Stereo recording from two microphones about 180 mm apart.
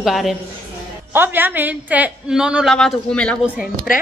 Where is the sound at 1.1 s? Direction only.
10° right (ahead or behind); by 3.4 s 5° left (ahead or behind).